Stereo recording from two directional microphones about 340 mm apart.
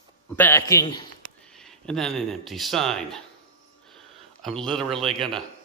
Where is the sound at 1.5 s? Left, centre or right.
Centre.